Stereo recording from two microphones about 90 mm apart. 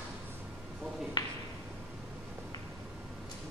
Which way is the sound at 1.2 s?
50° left (ahead or behind).